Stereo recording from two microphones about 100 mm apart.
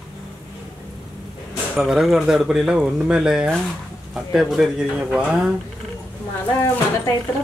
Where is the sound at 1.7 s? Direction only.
5° right (ahead or behind).